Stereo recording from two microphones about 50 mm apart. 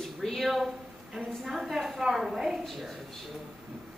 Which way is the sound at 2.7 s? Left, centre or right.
Centre.